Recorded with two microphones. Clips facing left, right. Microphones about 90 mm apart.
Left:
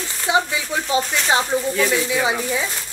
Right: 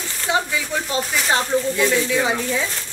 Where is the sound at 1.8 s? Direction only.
15° left (ahead or behind).